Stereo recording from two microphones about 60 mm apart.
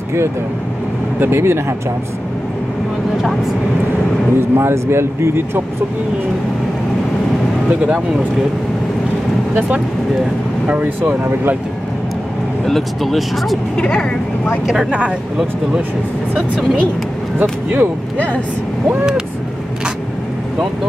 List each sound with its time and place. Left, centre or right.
1.2 s speech: right
4.4 s speech: right
10.7 s speech: right
12.6 s speech: centre
13.7 s speech: centre
14.9 s speech: right
17.4 s speech: right